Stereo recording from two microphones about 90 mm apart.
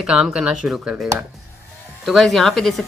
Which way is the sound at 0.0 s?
10° right (ahead or behind).